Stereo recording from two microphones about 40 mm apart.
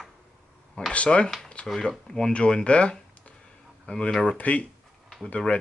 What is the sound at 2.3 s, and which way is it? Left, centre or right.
Speech, left.